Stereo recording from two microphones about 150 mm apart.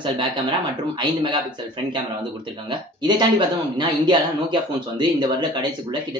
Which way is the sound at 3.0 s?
30° right (ahead or behind).